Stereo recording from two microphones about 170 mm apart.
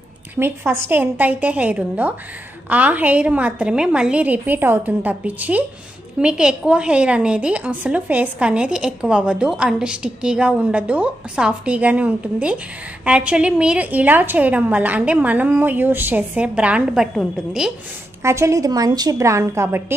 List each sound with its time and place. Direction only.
0.4 s a woman's voice: 15° right (ahead or behind)
18.2 s a woman's voice: 15° right (ahead or behind)